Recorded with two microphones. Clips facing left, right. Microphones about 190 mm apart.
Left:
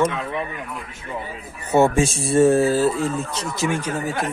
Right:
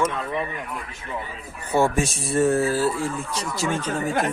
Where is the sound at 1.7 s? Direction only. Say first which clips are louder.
Left 4 dB; 25° left (ahead or behind).